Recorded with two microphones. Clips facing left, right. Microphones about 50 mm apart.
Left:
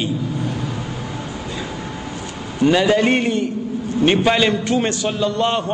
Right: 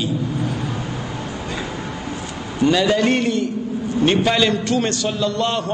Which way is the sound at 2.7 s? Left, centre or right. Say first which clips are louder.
Left 2 dB; left.